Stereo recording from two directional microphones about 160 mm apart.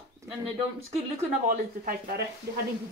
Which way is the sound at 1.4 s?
65° right (ahead or behind).